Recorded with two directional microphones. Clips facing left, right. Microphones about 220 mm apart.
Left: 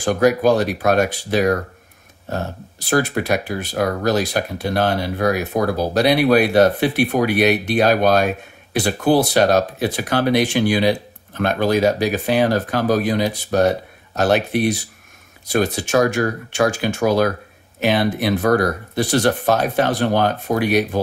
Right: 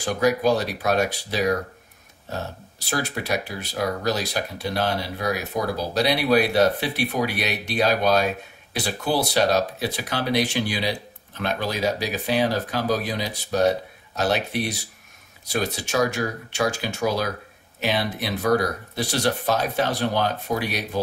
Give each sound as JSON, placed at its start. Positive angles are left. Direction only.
{"t": 0.0, "sound": "speech", "side_deg": 55}